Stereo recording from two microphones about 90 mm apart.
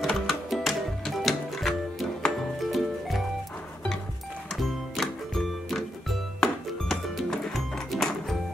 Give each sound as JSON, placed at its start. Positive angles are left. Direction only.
{"t": 0.0, "sound": "music", "side_deg": 0}
{"t": 4.6, "sound": "music", "side_deg": 0}